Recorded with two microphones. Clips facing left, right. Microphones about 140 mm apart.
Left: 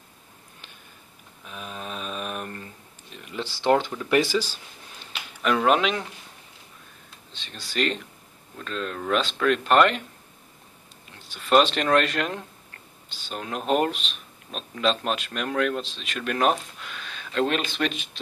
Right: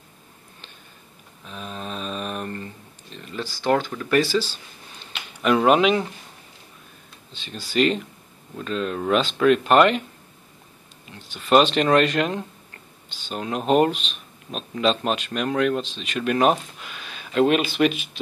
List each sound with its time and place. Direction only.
1.4 s a sound: 5° left (ahead or behind)
3.6 s speech: 25° left (ahead or behind)
5.4 s speech: 5° right (ahead or behind)
7.3 s speech: centre (ahead or behind)
11.1 s speech: centre (ahead or behind)